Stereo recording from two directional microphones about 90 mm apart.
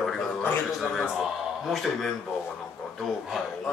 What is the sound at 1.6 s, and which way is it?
Speech, centre (ahead or behind).